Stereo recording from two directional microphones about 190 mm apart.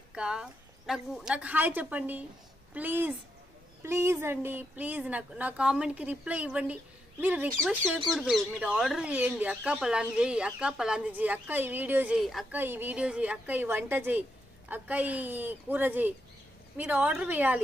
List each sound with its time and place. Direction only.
0.1 s speech: 5° right (ahead or behind)